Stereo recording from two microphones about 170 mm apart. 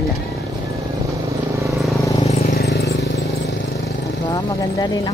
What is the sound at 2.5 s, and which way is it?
Vehicle, 65° left (ahead or behind).